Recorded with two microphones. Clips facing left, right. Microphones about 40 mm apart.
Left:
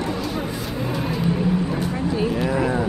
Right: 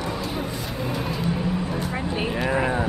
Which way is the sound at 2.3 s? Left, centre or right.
Centre.